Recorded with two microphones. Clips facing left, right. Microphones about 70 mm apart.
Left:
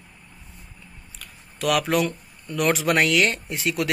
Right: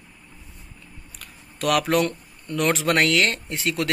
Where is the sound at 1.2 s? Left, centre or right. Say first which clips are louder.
Even; centre.